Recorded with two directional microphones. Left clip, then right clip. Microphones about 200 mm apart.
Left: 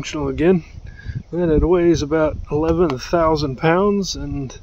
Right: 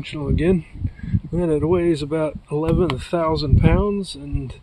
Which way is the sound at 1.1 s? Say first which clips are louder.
Left 3 dB; centre (ahead or behind).